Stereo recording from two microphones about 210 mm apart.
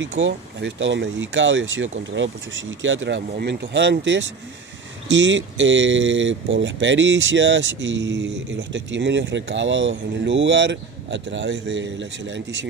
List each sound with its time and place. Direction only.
0.2 s speech: 60° right (ahead or behind)